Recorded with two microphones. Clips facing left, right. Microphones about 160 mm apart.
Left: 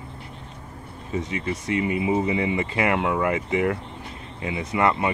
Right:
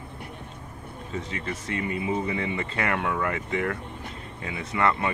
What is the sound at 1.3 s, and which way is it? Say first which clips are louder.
Speech: left 7 dB; 15° left (ahead or behind).